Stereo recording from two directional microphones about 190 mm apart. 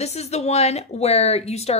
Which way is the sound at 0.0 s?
35° left (ahead or behind).